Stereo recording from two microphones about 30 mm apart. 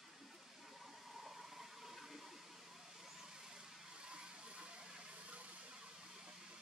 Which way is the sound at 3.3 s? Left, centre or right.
Centre.